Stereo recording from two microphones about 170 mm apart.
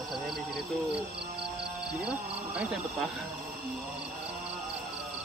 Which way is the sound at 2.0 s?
5° right (ahead or behind).